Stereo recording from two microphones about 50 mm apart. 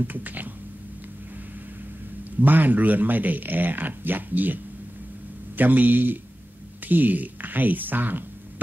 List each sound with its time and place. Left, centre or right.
0.0 s speech: right
2.4 s speech: right
5.6 s speech: right